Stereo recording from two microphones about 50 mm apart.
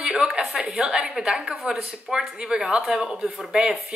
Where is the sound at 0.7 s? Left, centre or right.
Centre.